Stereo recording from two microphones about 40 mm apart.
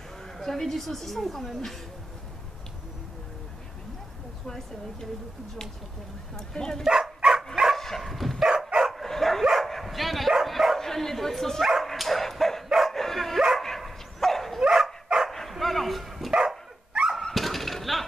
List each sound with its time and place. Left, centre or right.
0.4 s a woman's voice: centre
6.3 s speech: centre
6.8 s dog: centre
7.7 s dog: centre
8.4 s dog: centre
8.9 s dog: centre
9.7 s bow-wow: centre
10.8 s bow-wow: centre
11.6 s dog: centre
14.6 s dog: centre
15.2 s dog: centre
16.3 s dog: centre
17.0 s a sound: right
17.3 s dog: centre